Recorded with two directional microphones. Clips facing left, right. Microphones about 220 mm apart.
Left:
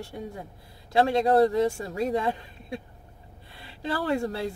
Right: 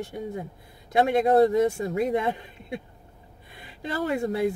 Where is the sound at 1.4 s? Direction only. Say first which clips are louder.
Right 2 dB; 20° right (ahead or behind).